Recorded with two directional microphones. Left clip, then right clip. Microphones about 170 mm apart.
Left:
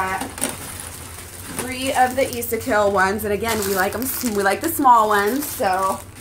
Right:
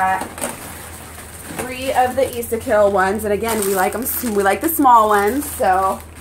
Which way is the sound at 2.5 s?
25° left (ahead or behind).